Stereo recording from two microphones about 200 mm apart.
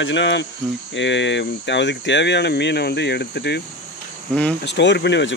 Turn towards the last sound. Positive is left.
turn(degrees=60)  # may be behind; listen again after turning